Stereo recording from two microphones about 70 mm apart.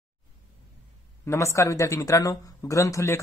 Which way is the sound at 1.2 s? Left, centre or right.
Left.